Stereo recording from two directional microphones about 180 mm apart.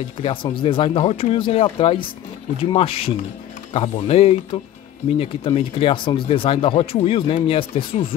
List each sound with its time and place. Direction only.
0.2 s speech: 30° left (ahead or behind)